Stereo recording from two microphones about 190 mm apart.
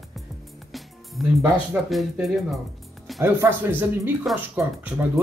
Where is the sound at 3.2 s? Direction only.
10° right (ahead or behind).